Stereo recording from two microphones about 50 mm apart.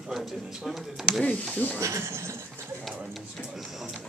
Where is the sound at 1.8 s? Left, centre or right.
Right.